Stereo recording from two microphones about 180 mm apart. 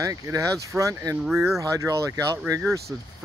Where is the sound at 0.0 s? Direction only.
20° right (ahead or behind).